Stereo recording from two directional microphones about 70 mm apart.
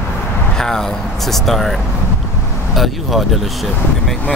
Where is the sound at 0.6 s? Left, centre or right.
Centre.